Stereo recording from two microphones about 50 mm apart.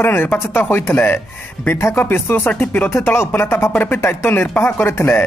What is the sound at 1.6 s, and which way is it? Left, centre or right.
Speech, left.